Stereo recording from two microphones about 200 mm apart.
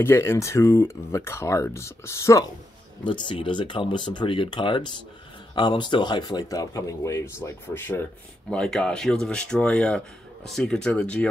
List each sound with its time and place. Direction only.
0.0 s speech: 10° left (ahead or behind)
3.0 s speech: 25° left (ahead or behind); by 11.2 s 5° left (ahead or behind)